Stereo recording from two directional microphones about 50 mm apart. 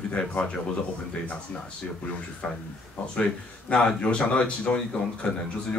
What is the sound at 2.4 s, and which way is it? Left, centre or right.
Speech, centre.